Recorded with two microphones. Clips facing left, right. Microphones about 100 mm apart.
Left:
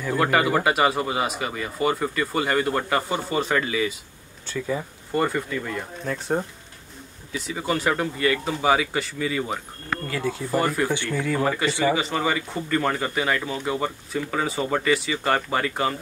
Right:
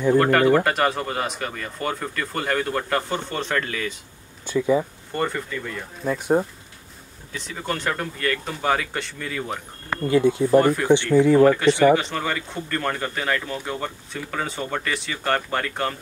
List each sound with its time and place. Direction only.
0.1 s speech: 5° left (ahead or behind)
4.5 s speech: 20° right (ahead or behind)
5.1 s speech: 5° left (ahead or behind)
6.1 s speech: 10° right (ahead or behind)
7.3 s speech: 5° left (ahead or behind)
10.0 s speech: 25° right (ahead or behind)
10.5 s speech: centre (ahead or behind)